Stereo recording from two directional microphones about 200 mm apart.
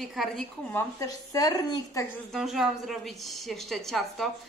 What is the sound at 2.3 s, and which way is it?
A woman's voice, centre (ahead or behind).